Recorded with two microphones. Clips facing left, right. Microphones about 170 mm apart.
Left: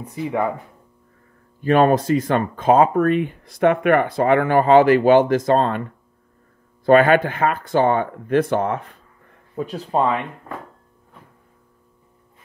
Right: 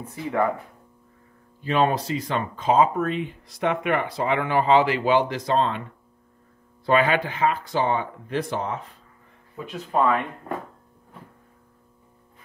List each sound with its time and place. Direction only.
0.0 s speech: 15° left (ahead or behind)
1.6 s speech: 50° left (ahead or behind)
9.7 s speech: 30° left (ahead or behind)